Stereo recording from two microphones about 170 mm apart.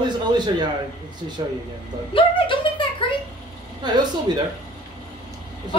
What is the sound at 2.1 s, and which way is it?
Speech, 30° left (ahead or behind).